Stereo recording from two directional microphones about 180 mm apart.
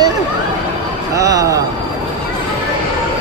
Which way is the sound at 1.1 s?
20° right (ahead or behind).